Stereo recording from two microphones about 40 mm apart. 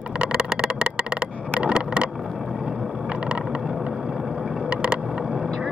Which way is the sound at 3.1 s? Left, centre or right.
Right.